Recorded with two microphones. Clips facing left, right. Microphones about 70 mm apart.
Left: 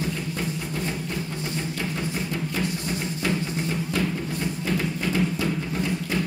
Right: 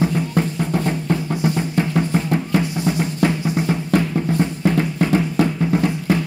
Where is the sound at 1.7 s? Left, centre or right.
Right.